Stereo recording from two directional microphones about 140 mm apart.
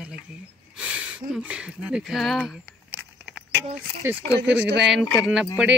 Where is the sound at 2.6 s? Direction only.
10° right (ahead or behind).